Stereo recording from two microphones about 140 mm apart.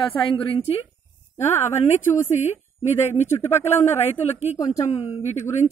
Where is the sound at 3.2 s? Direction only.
15° left (ahead or behind).